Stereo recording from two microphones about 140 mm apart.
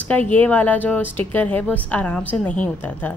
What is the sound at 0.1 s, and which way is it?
A woman's voice, 10° left (ahead or behind).